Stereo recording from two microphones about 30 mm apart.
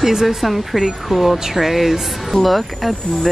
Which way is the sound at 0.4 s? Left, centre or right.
Centre.